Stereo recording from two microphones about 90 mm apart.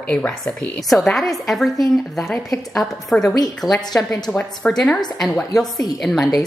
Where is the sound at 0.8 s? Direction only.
Centre (ahead or behind).